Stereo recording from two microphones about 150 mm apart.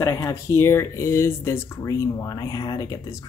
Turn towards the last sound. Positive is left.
turn(degrees=25)  # may be behind; listen again after turning